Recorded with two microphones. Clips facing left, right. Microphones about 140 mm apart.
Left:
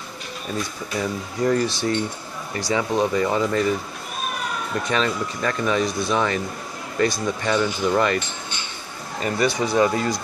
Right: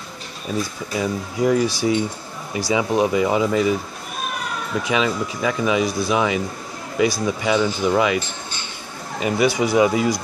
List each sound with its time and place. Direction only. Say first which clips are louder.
0.6 s speech: right 3 dB; 5° right (ahead or behind)
4.7 s speech: right 2 dB; 5° right (ahead or behind)
9.2 s speech: right 3 dB; 10° right (ahead or behind)